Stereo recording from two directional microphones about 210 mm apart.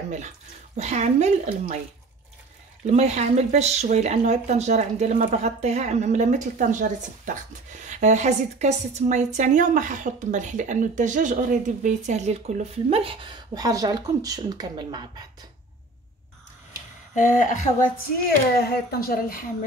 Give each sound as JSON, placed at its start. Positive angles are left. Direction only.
{"t": 0.7, "sound": "speech", "side_deg": -35}
{"t": 2.9, "sound": "speech", "side_deg": -30}
{"t": 17.1, "sound": "speech", "side_deg": 40}
{"t": 18.6, "sound": "speech", "side_deg": 50}